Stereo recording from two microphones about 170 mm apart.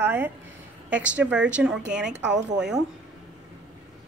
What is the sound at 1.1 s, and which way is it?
A woman's voice, 5° right (ahead or behind).